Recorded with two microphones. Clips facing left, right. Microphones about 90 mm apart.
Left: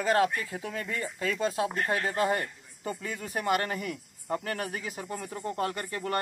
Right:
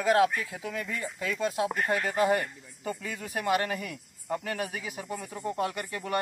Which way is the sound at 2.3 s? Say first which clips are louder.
Right 3 dB; 25° left (ahead or behind).